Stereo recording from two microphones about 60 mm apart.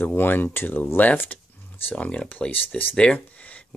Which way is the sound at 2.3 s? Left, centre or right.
Left.